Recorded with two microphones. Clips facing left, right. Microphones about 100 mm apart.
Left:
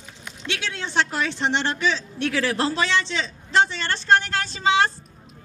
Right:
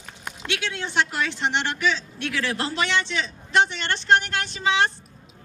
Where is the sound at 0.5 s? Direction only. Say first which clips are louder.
Even; 30° left (ahead or behind).